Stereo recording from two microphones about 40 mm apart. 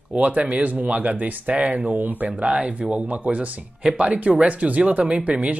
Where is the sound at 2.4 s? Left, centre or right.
Right.